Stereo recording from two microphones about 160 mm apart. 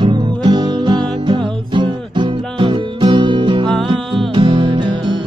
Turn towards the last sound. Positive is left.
turn(degrees=-30)  # may be behind; listen again after turning